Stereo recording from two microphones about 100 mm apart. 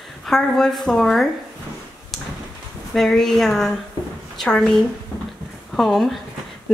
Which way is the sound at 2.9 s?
5° left (ahead or behind).